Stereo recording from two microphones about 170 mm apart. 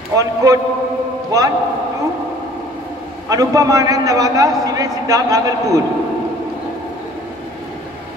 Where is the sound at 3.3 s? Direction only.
20° right (ahead or behind).